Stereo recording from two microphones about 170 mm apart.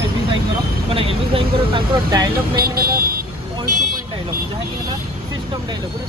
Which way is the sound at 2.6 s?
65° right (ahead or behind).